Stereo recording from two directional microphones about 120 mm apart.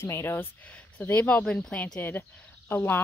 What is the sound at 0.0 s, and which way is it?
Speech, 20° left (ahead or behind).